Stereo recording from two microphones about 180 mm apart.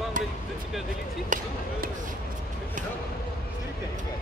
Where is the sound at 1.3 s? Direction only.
45° right (ahead or behind).